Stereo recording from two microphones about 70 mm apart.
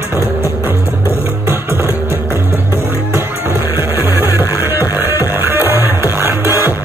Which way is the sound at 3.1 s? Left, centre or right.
Right.